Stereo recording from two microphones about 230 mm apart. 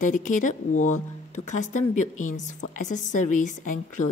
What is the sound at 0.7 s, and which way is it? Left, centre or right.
Speech, left.